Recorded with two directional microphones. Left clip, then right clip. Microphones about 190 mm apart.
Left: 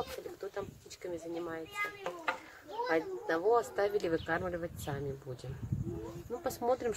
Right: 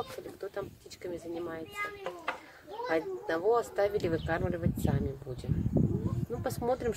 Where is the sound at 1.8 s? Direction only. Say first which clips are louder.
Even; 60° left (ahead or behind).